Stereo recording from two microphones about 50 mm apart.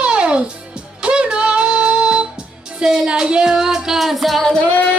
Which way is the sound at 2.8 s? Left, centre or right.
Centre.